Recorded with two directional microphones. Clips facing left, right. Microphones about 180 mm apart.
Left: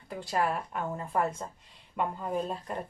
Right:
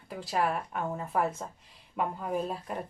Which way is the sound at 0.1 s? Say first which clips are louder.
Even; centre (ahead or behind).